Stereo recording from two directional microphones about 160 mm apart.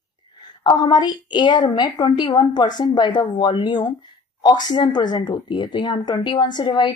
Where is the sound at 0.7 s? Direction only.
25° left (ahead or behind).